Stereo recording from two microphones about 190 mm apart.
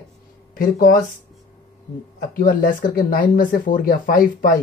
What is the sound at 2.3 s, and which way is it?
Speech, 50° left (ahead or behind).